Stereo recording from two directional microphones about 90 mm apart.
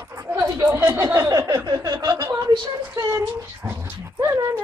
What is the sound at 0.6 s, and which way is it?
Speech, 25° right (ahead or behind).